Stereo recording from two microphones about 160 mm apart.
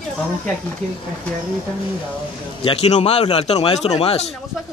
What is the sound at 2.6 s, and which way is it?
A man's voice, 40° left (ahead or behind).